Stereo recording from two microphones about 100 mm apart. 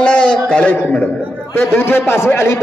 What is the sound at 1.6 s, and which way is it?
Speech, 20° left (ahead or behind).